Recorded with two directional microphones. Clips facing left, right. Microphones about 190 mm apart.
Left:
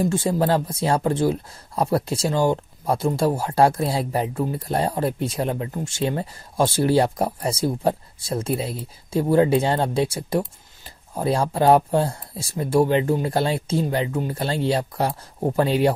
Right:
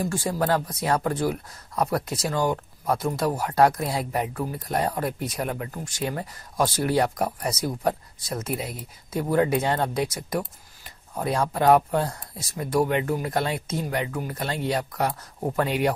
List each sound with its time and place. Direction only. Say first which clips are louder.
0.0 s speech: left 5 dB; 25° left (ahead or behind)